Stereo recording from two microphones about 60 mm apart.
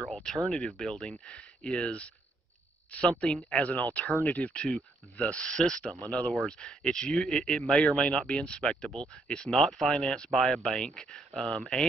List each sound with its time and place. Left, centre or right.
0.0 s a sound: centre
0.5 s speech: centre
3.4 s speech: left
5.4 s speech: centre
7.8 s speech: centre